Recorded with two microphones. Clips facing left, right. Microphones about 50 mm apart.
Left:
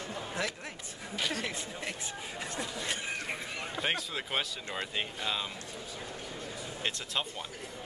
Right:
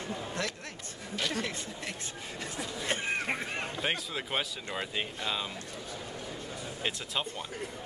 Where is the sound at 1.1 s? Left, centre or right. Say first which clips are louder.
Right 1 dB; centre.